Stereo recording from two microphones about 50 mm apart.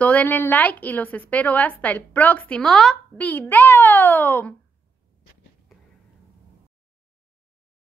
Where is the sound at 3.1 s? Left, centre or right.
Left.